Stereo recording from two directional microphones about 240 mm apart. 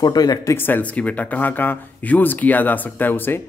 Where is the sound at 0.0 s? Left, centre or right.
Centre.